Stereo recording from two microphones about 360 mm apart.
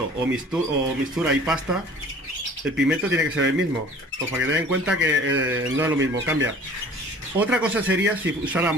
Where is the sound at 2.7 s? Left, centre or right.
Centre.